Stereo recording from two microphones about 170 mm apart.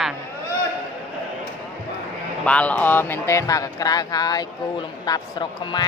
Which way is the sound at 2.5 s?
10° left (ahead or behind).